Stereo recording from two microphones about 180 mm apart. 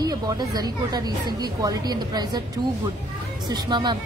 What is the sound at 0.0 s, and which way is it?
A woman's voice, 20° right (ahead or behind).